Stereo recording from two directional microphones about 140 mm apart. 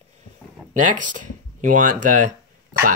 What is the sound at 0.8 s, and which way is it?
Speech, 65° right (ahead or behind).